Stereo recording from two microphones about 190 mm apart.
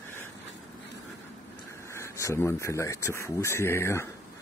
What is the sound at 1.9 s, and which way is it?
Speech, 15° left (ahead or behind).